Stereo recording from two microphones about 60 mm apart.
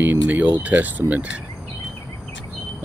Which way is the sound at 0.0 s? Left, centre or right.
Right.